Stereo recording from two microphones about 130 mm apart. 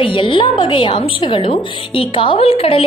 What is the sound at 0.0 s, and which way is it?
A woman's voice, 40° left (ahead or behind).